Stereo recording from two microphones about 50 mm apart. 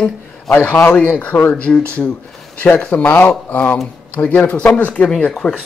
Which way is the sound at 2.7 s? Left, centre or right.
Left.